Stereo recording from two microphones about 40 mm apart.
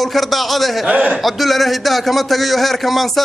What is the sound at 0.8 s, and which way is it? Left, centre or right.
Speech, right.